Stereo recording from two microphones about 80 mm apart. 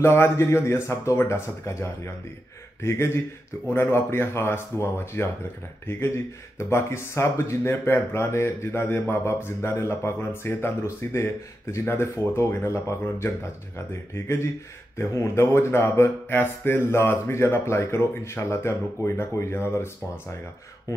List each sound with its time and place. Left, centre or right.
0.0 s speech: left